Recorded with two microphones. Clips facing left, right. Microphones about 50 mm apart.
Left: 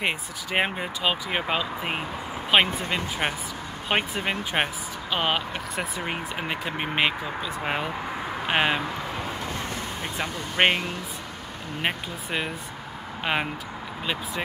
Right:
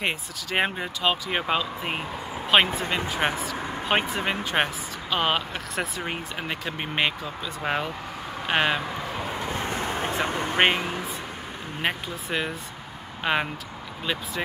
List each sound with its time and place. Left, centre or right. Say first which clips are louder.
0.6 s speech: even; centre
8.9 s vehicle: even; centre
9.4 s vehicle: right 3 dB; right
11.8 s speech: right 1 dB; centre